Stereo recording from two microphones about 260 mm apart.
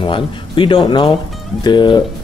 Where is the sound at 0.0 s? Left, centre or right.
Centre.